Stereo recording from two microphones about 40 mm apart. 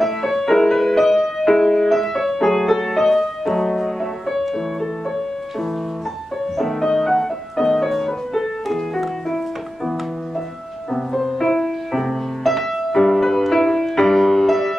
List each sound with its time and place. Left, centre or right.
0.0 s music: centre
6.6 s music: centre
10.9 s music: centre